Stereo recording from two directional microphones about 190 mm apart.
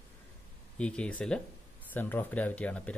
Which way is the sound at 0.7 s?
5° left (ahead or behind).